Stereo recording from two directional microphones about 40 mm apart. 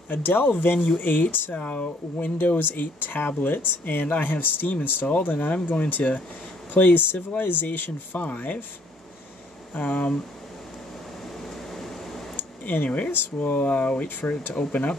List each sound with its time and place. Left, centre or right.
0.1 s speech: left
1.6 s speech: left
8.2 s speech: left
9.8 s speech: left
12.4 s a sound: left
13.1 s speech: left
13.5 s speech: left